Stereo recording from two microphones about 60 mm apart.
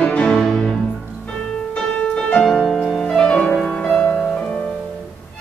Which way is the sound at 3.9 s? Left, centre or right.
Left.